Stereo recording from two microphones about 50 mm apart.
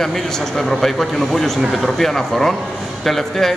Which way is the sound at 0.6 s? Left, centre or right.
Centre.